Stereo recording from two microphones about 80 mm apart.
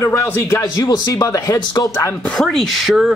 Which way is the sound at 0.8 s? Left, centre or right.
Left.